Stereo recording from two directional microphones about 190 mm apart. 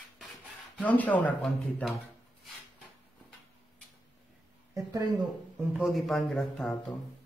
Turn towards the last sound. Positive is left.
turn(degrees=5)  # may be behind; listen again after turning